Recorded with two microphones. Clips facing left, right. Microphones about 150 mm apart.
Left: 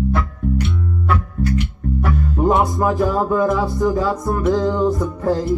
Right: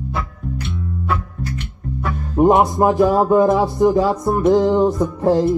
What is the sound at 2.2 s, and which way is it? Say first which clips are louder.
Music: right 5 dB; 20° right (ahead or behind).